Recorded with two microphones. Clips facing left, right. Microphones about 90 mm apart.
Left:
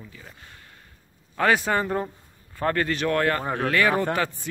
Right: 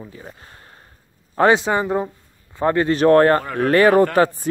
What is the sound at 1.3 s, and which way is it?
A man's voice, 25° right (ahead or behind).